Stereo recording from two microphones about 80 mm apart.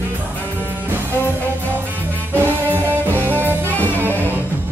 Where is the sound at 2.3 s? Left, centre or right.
Right.